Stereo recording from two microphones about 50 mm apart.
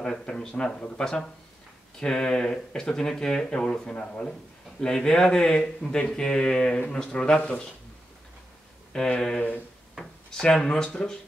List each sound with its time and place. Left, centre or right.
0.0 s a man's voice: centre
8.9 s speech: centre
10.4 s speech: centre